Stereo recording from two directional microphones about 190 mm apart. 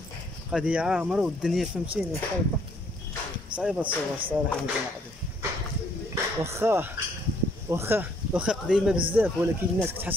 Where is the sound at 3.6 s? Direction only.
5° right (ahead or behind).